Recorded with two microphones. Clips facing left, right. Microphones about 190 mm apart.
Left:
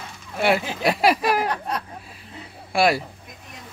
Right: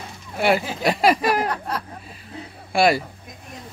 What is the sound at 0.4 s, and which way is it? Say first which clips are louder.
Speech: right 1 dB; centre (ahead or behind).